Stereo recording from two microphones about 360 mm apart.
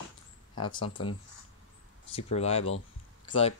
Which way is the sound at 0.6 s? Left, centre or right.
Centre.